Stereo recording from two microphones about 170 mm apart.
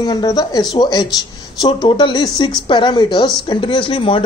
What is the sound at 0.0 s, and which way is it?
A woman's voice, 25° left (ahead or behind).